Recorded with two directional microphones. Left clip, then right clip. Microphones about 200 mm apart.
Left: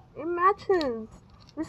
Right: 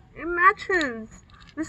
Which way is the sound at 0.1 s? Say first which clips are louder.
Right 4 dB; centre (ahead or behind).